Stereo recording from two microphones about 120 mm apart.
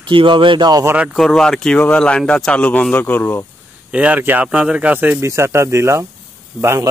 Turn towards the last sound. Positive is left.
turn(degrees=-20)  # may be behind; listen again after turning